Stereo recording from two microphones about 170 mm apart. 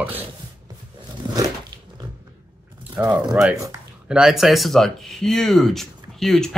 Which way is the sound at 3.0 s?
25° right (ahead or behind).